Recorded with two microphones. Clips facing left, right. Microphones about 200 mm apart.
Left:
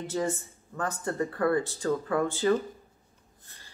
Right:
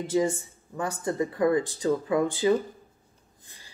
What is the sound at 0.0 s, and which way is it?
Speech, 15° right (ahead or behind).